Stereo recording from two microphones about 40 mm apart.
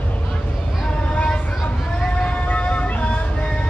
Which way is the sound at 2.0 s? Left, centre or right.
Centre.